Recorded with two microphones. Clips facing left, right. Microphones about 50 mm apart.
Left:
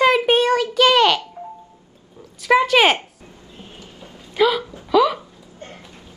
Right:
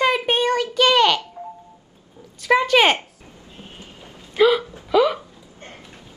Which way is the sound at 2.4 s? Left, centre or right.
Centre.